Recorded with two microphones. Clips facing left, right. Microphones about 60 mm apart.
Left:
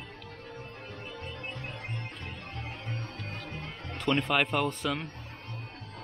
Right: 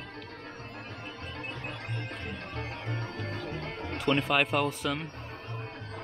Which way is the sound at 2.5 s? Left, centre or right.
Right.